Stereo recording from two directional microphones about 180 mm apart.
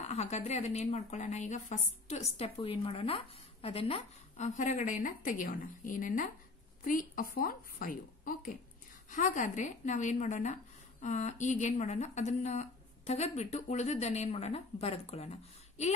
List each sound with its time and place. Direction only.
0.0 s a woman's voice: 40° left (ahead or behind)